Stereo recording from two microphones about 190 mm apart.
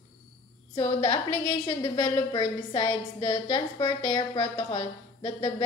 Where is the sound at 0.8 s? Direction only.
25° left (ahead or behind).